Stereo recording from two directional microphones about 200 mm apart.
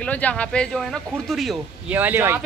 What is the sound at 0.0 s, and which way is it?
Speech, 5° left (ahead or behind).